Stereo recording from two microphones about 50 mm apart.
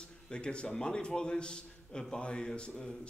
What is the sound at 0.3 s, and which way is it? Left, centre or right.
A man's voice, left.